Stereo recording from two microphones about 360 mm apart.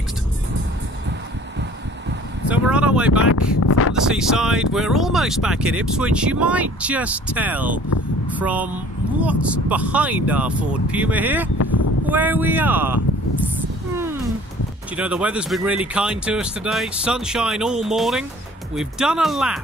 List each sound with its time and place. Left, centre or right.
2.4 s speech: centre
3.2 s speech: left
4.1 s speech: centre
15.0 s speech: centre